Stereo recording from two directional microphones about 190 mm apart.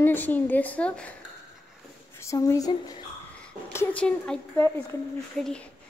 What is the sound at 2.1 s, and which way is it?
Speech, 15° left (ahead or behind).